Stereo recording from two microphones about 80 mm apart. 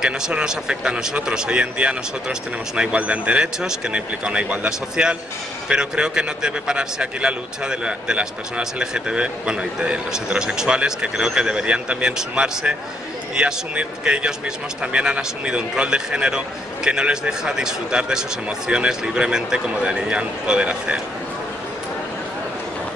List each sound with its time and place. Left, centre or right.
0.0 s a man's voice: centre